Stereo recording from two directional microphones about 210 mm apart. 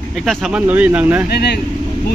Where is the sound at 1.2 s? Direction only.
50° left (ahead or behind).